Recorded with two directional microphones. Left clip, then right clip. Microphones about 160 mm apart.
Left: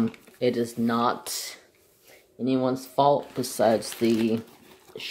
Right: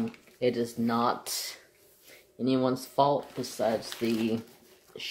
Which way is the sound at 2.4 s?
5° right (ahead or behind).